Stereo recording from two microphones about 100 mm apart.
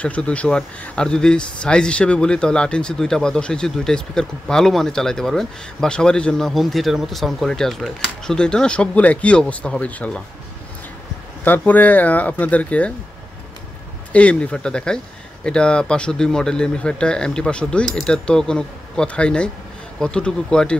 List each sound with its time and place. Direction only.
0.0 s speech: 15° left (ahead or behind)
11.4 s speech: 20° left (ahead or behind)
14.1 s speech: 10° left (ahead or behind)